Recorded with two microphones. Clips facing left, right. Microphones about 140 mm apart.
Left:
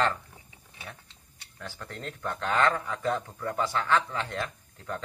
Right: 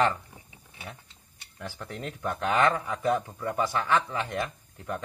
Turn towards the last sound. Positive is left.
turn(degrees=-15)  # may be behind; listen again after turning